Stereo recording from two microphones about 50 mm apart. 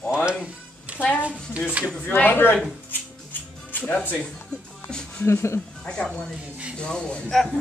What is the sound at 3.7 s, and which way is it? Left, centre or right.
Speech, left.